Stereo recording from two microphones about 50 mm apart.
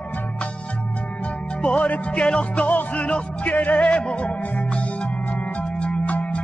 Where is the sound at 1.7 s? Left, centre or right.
Left.